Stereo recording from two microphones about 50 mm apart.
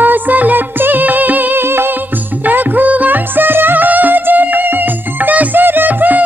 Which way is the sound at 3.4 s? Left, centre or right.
Right.